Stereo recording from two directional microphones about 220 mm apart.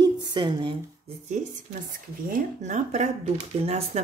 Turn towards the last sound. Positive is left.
turn(degrees=-30)  # may be behind; listen again after turning